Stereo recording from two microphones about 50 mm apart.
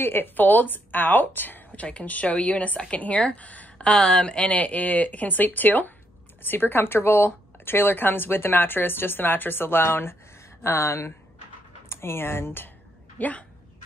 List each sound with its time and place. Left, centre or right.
0.0 s speech: left
1.8 s speech: left
3.9 s a woman's voice: centre; by 10.1 s left
10.6 s a woman's voice: left
13.2 s speech: left